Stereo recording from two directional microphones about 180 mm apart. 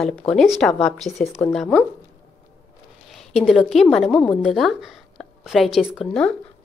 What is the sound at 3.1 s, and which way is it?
A woman's voice, centre (ahead or behind).